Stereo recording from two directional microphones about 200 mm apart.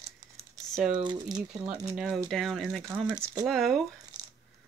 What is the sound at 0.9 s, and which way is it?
Speech, 20° right (ahead or behind).